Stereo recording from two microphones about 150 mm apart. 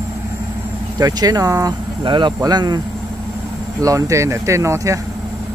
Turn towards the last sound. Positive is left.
turn(degrees=-20)  # may be behind; listen again after turning